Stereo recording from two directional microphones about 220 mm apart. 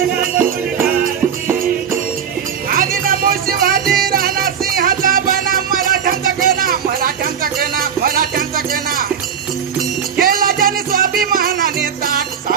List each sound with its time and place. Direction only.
2.7 s music: 40° right (ahead or behind)
10.1 s music: 40° right (ahead or behind)